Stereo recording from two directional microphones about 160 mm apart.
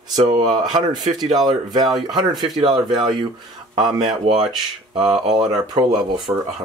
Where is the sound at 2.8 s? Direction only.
30° right (ahead or behind).